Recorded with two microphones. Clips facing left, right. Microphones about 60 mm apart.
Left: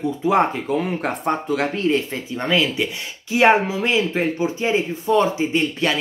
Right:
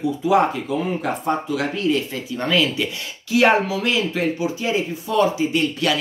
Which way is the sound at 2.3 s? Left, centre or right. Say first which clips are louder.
Even; left.